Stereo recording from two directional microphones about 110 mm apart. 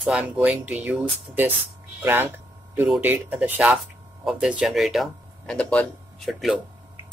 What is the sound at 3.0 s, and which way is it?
Speech, 15° right (ahead or behind).